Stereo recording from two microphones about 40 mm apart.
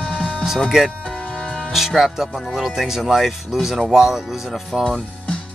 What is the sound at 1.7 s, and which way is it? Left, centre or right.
Speech, centre.